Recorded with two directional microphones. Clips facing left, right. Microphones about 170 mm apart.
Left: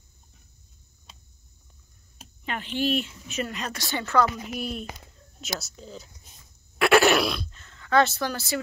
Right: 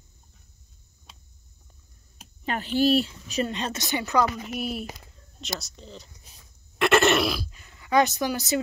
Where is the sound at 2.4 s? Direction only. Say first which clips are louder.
Right 5 dB; 40° right (ahead or behind); by 4.3 s 15° right (ahead or behind).